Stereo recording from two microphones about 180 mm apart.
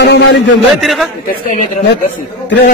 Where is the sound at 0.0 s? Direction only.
75° left (ahead or behind).